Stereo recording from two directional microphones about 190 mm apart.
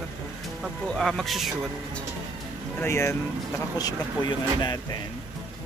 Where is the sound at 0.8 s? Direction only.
Centre (ahead or behind).